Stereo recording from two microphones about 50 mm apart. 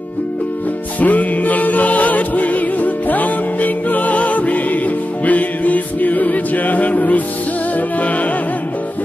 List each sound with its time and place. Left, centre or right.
1.0 s music: left